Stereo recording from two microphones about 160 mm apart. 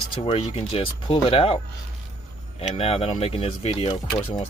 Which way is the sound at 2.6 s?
40° left (ahead or behind).